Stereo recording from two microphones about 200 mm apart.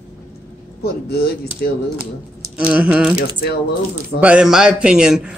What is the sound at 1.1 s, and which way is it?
Speech, 50° left (ahead or behind).